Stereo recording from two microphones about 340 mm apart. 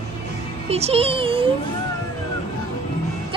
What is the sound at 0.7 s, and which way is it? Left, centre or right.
Speech, centre.